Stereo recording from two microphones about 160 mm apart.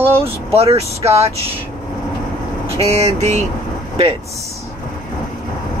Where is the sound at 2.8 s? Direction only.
40° right (ahead or behind).